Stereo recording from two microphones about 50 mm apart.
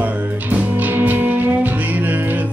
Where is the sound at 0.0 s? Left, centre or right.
Right.